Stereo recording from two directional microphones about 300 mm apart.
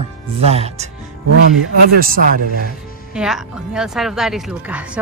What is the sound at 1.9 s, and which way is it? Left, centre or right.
Speech, right.